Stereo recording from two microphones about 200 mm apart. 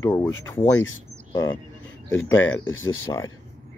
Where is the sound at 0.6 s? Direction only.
90° left.